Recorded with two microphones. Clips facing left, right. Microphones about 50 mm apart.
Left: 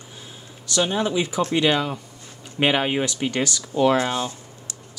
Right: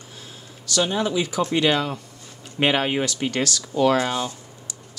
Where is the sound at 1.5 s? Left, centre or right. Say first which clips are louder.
Even; centre.